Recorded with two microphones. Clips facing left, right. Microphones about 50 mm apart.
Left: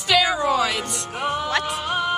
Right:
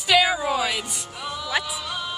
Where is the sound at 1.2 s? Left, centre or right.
Left.